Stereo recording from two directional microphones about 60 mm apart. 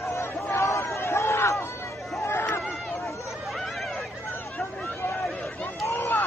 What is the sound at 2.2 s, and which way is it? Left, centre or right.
Chatter, left.